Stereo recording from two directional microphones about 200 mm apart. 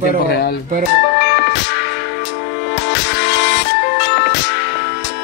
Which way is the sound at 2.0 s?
55° left (ahead or behind).